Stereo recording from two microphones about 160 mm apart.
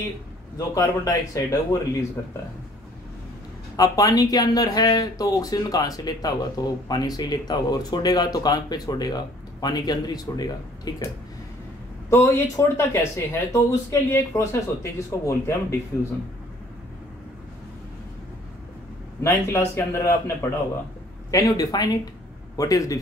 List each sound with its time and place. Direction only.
0.6 s speech: 20° left (ahead or behind)
3.7 s speech: 20° left (ahead or behind)
12.1 s speech: 15° left (ahead or behind)
19.2 s speech: 15° left (ahead or behind)